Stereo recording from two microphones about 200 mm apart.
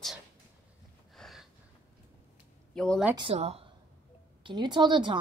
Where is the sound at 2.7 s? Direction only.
5° left (ahead or behind).